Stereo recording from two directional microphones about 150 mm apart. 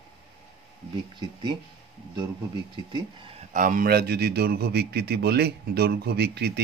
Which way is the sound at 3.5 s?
65° right (ahead or behind).